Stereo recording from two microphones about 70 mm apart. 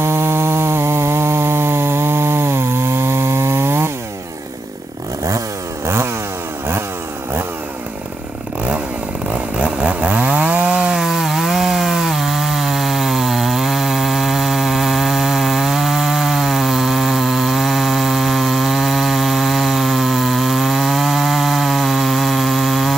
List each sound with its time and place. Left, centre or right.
0.0 s chainsaw: right
9.3 s chainsaw: centre